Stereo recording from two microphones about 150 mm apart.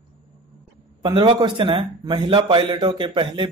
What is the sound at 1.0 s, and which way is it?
A man's voice, 30° right (ahead or behind).